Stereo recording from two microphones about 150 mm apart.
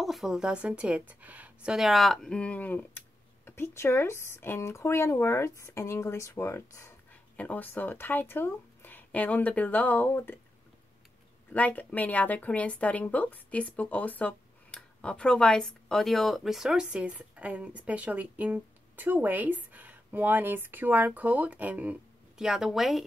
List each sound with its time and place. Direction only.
0.0 s a woman's voice: centre (ahead or behind); by 10.4 s 15° left (ahead or behind)
11.5 s a woman's voice: 10° left (ahead or behind)